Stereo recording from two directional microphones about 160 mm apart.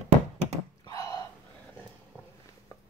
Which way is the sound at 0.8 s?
20° left (ahead or behind).